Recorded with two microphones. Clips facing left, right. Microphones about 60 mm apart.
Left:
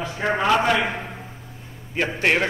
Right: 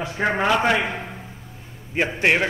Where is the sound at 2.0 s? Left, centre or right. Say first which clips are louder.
Right 1 dB; right.